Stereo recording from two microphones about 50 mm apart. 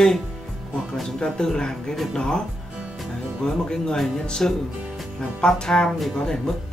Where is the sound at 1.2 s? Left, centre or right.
Centre.